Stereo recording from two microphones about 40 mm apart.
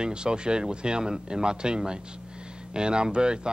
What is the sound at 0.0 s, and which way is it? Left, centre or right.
A man's voice, right.